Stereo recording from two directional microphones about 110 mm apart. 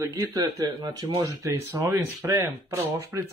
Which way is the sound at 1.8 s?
30° right (ahead or behind).